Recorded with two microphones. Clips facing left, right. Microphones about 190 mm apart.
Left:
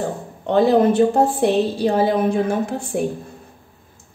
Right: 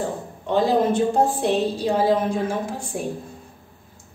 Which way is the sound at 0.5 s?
65° left (ahead or behind).